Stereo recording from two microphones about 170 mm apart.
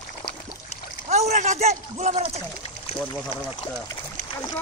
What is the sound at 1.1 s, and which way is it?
Speech, 40° right (ahead or behind).